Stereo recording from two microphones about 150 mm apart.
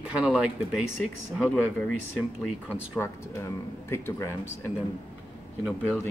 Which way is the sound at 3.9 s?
15° left (ahead or behind).